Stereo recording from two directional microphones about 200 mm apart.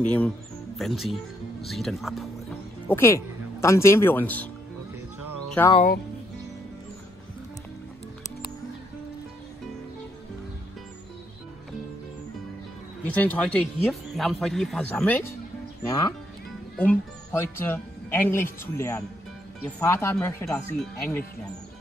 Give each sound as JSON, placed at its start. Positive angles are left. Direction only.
{"t": 0.0, "sound": "speech", "side_deg": 5}
{"t": 2.9, "sound": "speech", "side_deg": 10}
{"t": 13.0, "sound": "speech", "side_deg": 10}